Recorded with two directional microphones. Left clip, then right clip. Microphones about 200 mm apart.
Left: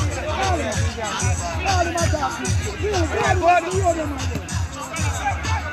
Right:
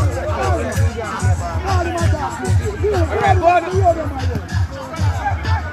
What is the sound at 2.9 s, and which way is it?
Music, 50° left (ahead or behind).